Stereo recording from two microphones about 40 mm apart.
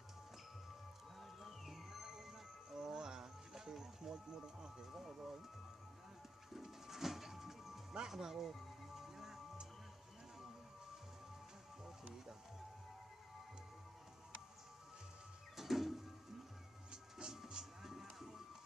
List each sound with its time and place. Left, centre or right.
1.2 s music: centre
4.9 s a sound: centre
6.5 s music: centre
8.1 s speech: centre
8.9 s music: centre
11.8 s music: centre
15.5 s music: centre
16.9 s music: centre